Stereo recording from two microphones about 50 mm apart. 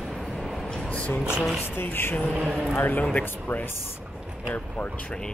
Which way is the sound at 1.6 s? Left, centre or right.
Left.